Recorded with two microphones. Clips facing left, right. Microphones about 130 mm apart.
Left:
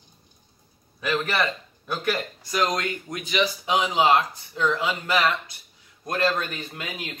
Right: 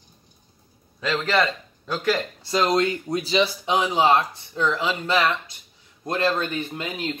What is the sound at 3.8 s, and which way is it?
Speech, 15° left (ahead or behind).